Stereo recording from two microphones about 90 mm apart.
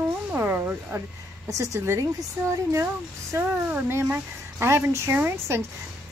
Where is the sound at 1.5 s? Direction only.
35° right (ahead or behind).